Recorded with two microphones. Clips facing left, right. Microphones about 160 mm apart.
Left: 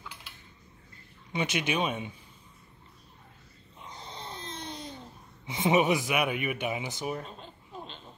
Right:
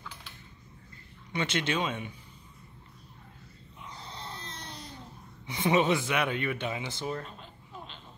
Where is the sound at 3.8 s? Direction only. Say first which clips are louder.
Left 1 dB; 20° left (ahead or behind).